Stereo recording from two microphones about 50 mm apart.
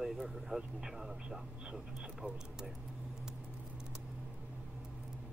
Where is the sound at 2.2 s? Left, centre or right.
Right.